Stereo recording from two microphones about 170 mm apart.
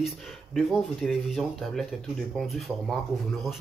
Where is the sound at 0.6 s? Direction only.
Centre (ahead or behind).